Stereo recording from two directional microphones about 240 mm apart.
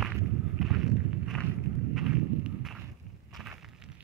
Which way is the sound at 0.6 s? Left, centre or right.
Centre.